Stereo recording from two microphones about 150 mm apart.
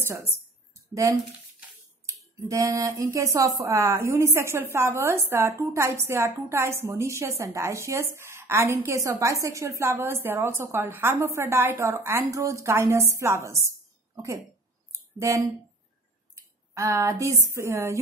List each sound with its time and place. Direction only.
1.1 s speech: 20° right (ahead or behind)
14.9 s a sound: 20° right (ahead or behind)
16.3 s speech: 20° right (ahead or behind)